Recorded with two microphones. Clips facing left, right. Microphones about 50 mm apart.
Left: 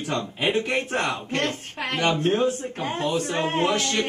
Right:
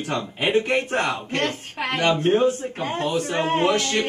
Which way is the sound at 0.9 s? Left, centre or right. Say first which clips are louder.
Right 2 dB; right.